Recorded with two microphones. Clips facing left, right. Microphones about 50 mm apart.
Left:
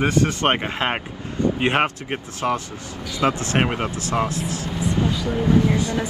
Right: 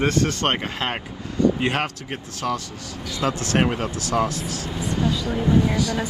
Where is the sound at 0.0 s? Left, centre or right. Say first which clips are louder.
Left 2 dB; centre.